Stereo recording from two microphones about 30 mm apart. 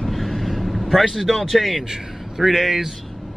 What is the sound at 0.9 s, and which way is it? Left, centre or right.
Speech, centre.